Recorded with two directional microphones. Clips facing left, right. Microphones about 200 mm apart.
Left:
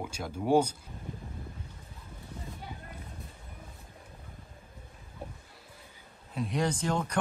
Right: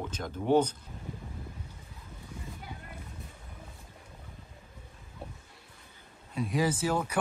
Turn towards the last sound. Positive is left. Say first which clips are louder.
# right 1 dB
turn(degrees=-5)  # may be behind; listen again after turning